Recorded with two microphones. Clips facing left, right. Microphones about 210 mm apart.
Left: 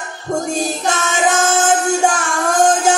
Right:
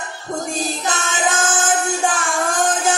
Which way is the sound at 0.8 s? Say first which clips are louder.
Left 6 dB; 45° left (ahead or behind).